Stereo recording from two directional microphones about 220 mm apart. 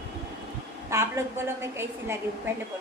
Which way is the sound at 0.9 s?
10° right (ahead or behind).